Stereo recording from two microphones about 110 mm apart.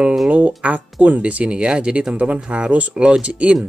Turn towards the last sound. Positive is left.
turn(degrees=-10)  # may be behind; listen again after turning